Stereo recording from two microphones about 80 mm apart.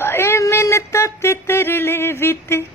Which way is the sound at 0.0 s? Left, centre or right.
Left.